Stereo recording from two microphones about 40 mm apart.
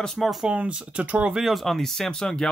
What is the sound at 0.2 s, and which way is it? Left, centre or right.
Speech, centre.